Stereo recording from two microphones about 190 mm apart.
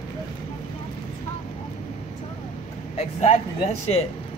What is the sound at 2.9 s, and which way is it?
Speech, 35° left (ahead or behind).